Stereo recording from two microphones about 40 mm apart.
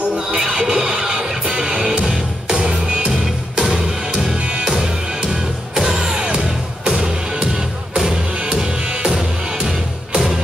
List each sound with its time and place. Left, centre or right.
0.3 s music: centre
3.1 s music: centre
4.4 s music: right
4.6 s music: centre
6.2 s music: right; by 10.4 s centre